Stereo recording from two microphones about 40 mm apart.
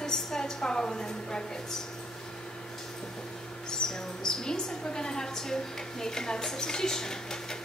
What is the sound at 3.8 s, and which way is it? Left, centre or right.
A woman's voice, left.